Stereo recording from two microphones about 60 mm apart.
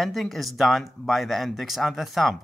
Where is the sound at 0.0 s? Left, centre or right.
Centre.